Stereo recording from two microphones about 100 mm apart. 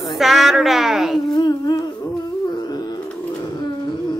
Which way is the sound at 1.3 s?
40° left (ahead or behind).